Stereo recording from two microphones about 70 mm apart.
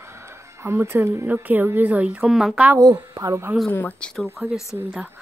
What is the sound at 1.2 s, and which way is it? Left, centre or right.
Speech, right.